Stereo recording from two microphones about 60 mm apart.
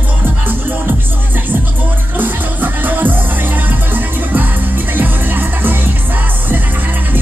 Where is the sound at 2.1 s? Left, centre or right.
Right.